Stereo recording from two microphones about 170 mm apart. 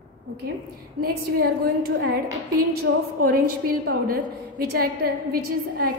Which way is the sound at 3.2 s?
60° right (ahead or behind).